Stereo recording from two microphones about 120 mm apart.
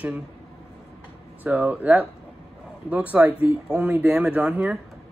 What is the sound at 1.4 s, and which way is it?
Speech, 15° right (ahead or behind).